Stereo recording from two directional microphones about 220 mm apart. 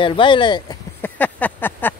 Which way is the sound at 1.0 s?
5° left (ahead or behind).